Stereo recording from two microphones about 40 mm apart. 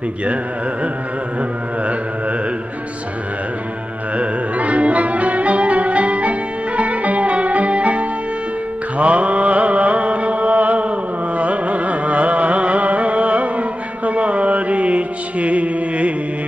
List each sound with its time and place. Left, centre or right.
4.2 s music: right
8.9 s mantra: right
11.3 s carnatic music: right